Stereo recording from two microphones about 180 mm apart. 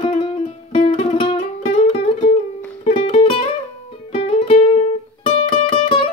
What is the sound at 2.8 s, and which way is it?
Music, 30° left (ahead or behind).